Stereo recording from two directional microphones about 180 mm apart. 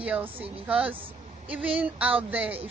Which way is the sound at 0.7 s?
5° right (ahead or behind).